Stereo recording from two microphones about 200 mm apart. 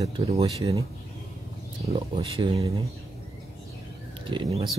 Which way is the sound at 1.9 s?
25° right (ahead or behind).